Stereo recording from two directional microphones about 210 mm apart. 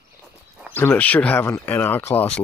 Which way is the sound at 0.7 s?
10° left (ahead or behind).